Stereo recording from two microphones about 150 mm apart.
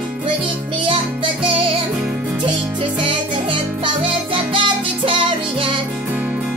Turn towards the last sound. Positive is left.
turn(degrees=-35)  # may be behind; listen again after turning